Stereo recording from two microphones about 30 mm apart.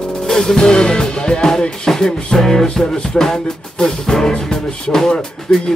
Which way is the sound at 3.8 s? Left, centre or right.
Centre.